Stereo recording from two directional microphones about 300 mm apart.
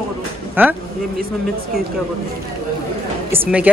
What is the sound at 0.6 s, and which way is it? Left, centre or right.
Speech, centre.